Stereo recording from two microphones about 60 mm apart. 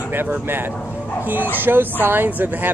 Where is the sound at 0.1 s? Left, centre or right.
Right.